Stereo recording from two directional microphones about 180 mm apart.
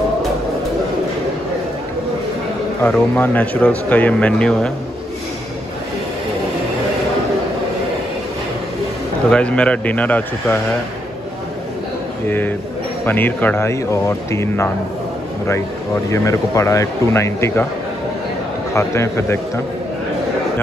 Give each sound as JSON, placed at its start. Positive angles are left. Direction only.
{"t": 2.8, "sound": "speech", "side_deg": 10}
{"t": 9.3, "sound": "speech", "side_deg": 5}
{"t": 12.3, "sound": "speech", "side_deg": 10}
{"t": 16.1, "sound": "speech", "side_deg": 15}
{"t": 18.7, "sound": "speech", "side_deg": 15}